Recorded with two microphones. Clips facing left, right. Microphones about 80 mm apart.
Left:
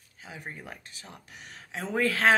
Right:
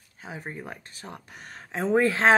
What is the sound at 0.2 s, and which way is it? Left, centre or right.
Speech, right.